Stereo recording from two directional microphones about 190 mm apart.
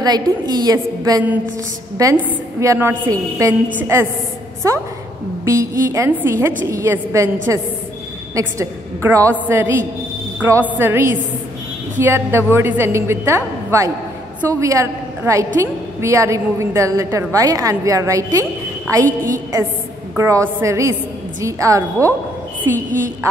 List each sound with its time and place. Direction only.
0.0 s a woman's voice: 20° right (ahead or behind)
20.2 s a woman's voice: 15° right (ahead or behind)